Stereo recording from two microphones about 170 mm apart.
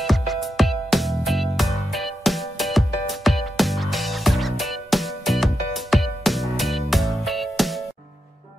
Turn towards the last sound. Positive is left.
turn(degrees=0)  # may be behind; listen again after turning